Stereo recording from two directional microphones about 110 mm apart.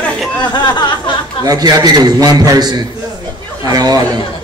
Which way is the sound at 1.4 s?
35° right (ahead or behind).